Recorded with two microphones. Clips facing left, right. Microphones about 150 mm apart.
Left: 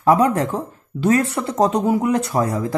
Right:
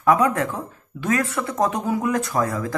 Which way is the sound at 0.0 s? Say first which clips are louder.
Left 3 dB; 30° left (ahead or behind).